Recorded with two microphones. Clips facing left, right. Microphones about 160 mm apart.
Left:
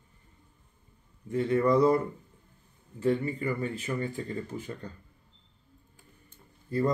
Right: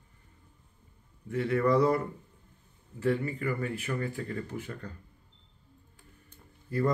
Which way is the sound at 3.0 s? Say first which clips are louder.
Left 2 dB; 20° left (ahead or behind).